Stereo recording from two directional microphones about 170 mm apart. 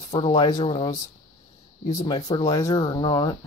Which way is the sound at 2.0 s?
20° left (ahead or behind).